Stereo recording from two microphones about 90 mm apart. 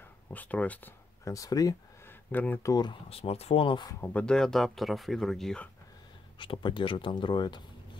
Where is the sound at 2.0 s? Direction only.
20° left (ahead or behind).